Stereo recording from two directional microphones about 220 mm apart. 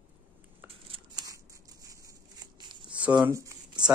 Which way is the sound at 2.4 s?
20° right (ahead or behind).